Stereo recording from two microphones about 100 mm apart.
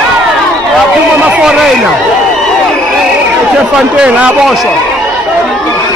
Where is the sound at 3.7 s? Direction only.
10° right (ahead or behind).